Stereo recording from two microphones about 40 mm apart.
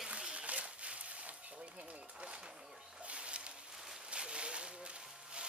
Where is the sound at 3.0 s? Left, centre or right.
Right.